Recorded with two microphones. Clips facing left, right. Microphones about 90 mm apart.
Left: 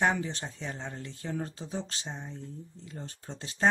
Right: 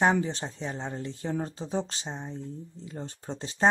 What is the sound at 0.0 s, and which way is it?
Speech, 25° right (ahead or behind).